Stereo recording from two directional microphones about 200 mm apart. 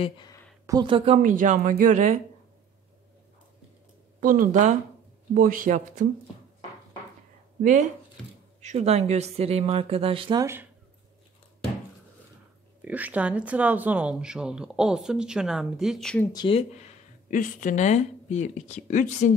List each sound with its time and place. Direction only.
0.7 s speech: 20° right (ahead or behind); by 2.1 s 40° right (ahead or behind)
4.2 s a man's voice: 40° right (ahead or behind)
8.5 s speech: 35° right (ahead or behind)
10.4 s speech: 10° right (ahead or behind)
12.8 s speech: 10° right (ahead or behind)
16.3 s speech: 25° left (ahead or behind)